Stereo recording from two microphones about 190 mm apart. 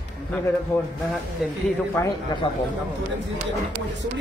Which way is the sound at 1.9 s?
20° left (ahead or behind).